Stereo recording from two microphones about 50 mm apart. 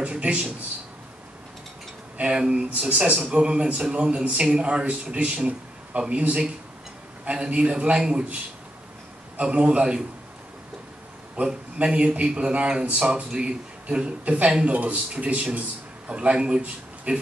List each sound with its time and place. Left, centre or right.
0.0 s speech: right
2.1 s speech: centre
9.4 s speech: right
11.4 s a man's voice: centre